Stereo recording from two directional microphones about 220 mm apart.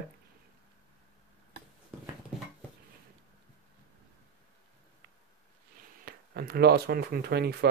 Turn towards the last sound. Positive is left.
turn(degrees=-45)  # may be behind; listen again after turning